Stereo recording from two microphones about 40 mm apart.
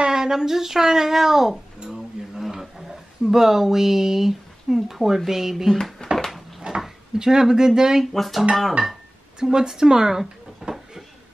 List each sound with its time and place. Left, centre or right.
0.0 s speech: centre
6.1 s a sound: centre
6.7 s a sound: right
7.2 s speech: centre
8.0 s speech: centre
9.4 s speech: centre